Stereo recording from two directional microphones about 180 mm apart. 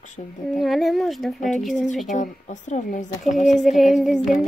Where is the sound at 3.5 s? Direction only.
Centre (ahead or behind).